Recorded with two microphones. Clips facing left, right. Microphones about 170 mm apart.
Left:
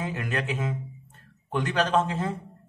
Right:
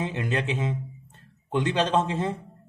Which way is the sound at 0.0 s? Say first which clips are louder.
Right 2 dB; 25° right (ahead or behind).